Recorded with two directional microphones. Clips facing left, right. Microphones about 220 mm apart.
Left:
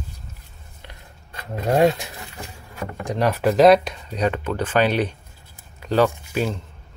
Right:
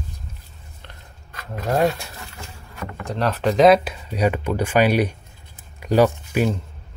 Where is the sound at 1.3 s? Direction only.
30° left (ahead or behind).